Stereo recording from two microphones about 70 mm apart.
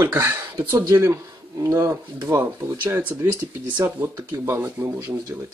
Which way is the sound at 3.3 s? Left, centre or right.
Right.